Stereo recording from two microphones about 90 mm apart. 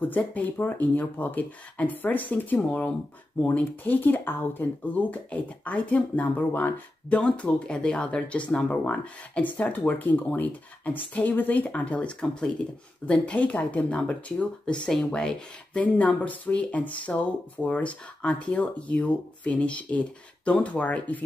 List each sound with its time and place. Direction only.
0.0 s speech: 20° left (ahead or behind)